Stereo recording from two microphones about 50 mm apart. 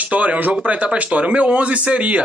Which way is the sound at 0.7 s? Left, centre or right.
Right.